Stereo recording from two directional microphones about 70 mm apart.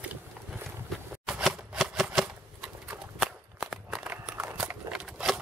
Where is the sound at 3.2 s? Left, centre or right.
Centre.